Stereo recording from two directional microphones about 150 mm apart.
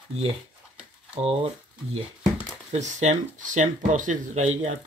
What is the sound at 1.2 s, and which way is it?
Speech, 40° right (ahead or behind).